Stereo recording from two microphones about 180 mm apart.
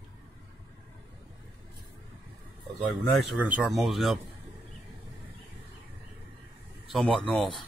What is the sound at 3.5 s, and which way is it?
Speech, 10° right (ahead or behind).